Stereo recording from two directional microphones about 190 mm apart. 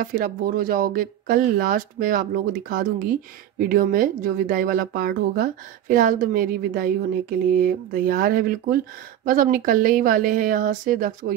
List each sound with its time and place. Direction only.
0.0 s a woman's voice: 50° right (ahead or behind)